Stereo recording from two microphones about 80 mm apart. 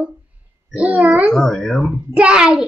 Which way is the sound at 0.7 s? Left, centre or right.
Centre.